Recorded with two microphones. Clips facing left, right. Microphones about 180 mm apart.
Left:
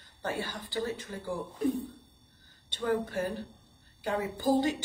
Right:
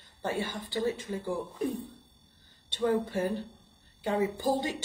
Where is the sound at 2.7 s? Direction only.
25° right (ahead or behind).